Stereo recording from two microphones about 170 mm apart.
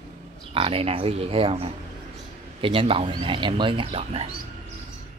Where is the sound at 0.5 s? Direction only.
35° right (ahead or behind).